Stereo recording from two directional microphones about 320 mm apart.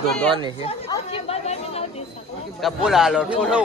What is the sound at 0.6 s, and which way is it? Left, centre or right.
Chatter, centre.